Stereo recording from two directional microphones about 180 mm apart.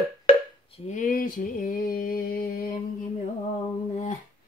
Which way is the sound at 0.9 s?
45° left (ahead or behind).